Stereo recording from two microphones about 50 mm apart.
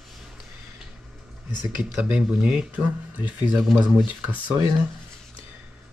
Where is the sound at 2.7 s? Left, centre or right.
Right.